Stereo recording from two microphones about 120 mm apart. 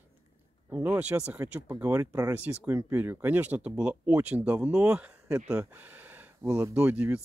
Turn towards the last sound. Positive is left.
turn(degrees=-15)  # may be behind; listen again after turning